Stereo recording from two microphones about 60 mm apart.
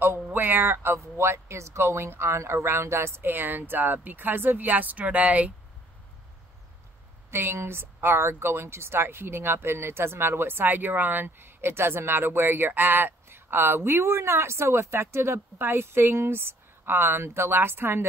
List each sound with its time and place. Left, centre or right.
0.0 s speech: right
0.9 s speech: right
7.2 s speech: right